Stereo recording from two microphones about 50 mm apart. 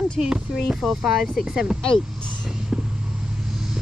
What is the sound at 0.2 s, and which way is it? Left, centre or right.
Speech, centre.